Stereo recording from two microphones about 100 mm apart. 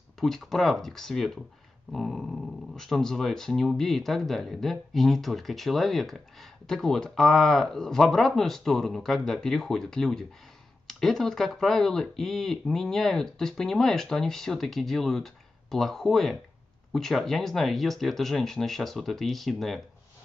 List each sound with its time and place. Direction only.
0.2 s speech: 5° left (ahead or behind)